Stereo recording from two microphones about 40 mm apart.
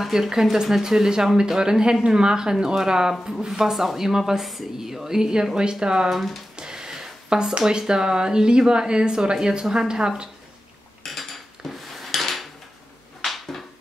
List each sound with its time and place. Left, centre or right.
0.0 s speech: centre
6.0 s speech: centre
6.5 s a sound: centre
7.8 s speech: centre
11.1 s dishes: centre
13.2 s a sound: centre